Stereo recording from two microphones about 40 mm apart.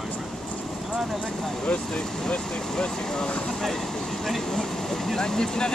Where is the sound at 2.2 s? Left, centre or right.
Centre.